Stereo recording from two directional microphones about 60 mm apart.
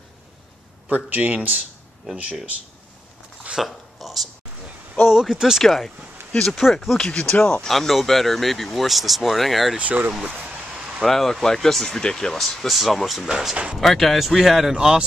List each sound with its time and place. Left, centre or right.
0.8 s a man's voice: right
3.5 s a sound: centre
5.0 s speech: centre
5.6 s speech: centre
7.1 s speech: centre
7.6 s speech: centre
9.8 s a man's voice: right
10.2 s a sound: right
11.0 s speech: centre